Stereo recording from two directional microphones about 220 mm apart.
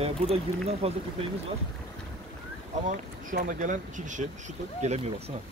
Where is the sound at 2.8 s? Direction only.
35° right (ahead or behind).